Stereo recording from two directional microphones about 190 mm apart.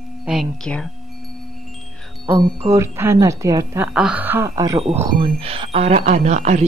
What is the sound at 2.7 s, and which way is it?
Speech, 15° right (ahead or behind).